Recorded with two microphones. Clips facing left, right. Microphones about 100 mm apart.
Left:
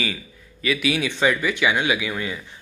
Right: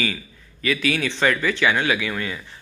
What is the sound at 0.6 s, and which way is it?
Speech, 15° left (ahead or behind).